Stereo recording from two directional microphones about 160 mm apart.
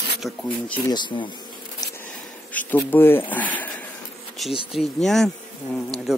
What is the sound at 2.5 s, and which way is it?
Speech, 10° left (ahead or behind).